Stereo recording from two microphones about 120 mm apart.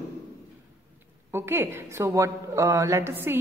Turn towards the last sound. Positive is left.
turn(degrees=-20)  # may be behind; listen again after turning